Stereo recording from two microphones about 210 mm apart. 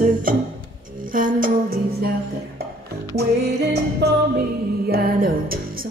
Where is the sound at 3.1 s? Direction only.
50° right (ahead or behind).